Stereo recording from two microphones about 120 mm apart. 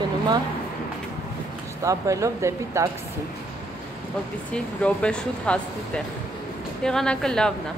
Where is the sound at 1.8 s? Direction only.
25° right (ahead or behind).